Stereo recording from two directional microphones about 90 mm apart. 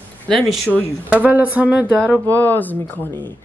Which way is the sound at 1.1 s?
15° right (ahead or behind).